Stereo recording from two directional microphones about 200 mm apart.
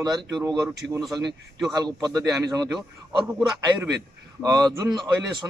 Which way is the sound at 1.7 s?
20° right (ahead or behind).